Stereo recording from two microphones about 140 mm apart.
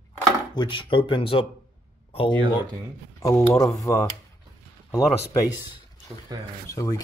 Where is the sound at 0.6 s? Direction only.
35° left (ahead or behind).